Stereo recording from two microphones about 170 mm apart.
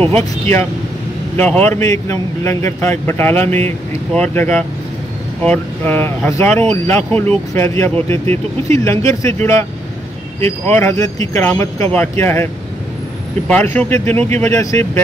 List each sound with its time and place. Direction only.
0.1 s a man's voice: 15° left (ahead or behind)
13.5 s a man's voice: 10° left (ahead or behind)